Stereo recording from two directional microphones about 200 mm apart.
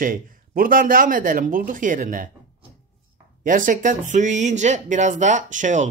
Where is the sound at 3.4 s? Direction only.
40° right (ahead or behind).